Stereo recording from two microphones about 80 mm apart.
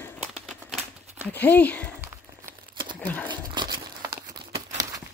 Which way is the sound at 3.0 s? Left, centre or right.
Centre.